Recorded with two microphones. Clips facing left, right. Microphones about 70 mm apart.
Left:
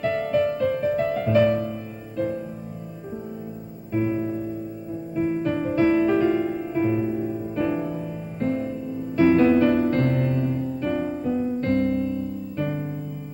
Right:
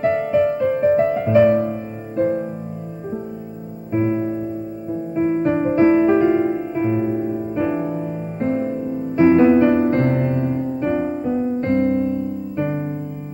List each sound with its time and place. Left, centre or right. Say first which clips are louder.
0.0 s music: right 5 dB; right
1.1 s music: right 5 dB; centre
3.9 s music: right 4 dB; right